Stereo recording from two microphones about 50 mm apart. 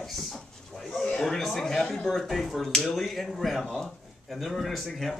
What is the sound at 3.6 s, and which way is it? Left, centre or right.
Speech, centre.